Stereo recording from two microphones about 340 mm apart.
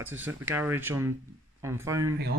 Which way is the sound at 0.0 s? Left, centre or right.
Centre.